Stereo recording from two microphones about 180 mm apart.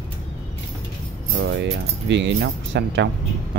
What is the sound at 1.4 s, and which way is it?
Speech, 85° right.